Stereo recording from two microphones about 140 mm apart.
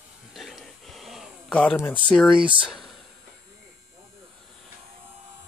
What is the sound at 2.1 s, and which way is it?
Speech, centre (ahead or behind).